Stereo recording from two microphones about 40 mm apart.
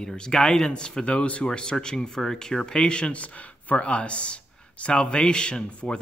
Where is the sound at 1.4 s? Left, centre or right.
Left.